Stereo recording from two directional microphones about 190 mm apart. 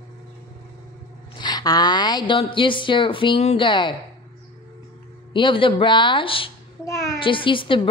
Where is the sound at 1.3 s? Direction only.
20° left (ahead or behind).